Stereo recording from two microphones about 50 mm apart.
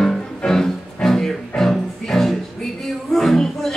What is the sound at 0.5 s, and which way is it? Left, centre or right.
Music, centre.